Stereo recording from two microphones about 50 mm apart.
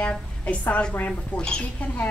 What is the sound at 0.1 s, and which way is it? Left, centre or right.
A woman's voice, left.